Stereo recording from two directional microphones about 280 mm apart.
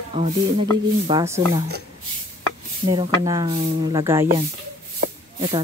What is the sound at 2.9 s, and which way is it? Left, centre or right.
Speech, centre.